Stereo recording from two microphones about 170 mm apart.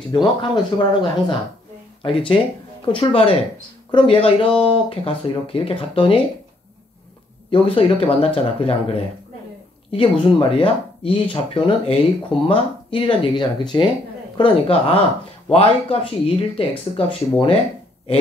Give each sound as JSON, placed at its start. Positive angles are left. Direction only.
{"t": 0.1, "sound": "speech", "side_deg": 30}
{"t": 2.0, "sound": "speech", "side_deg": 30}
{"t": 7.5, "sound": "speech", "side_deg": 35}